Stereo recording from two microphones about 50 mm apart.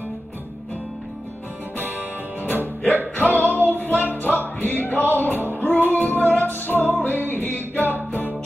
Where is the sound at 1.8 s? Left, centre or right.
Right.